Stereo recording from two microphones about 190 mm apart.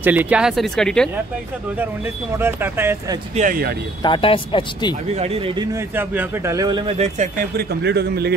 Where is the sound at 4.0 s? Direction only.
25° left (ahead or behind).